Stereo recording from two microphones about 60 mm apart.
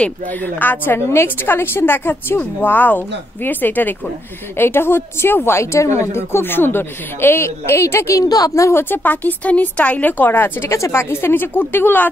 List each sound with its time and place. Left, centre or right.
0.6 s a woman's voice: left
8.2 s a woman's voice: left
8.7 s a woman's voice: left
10.7 s a woman's voice: left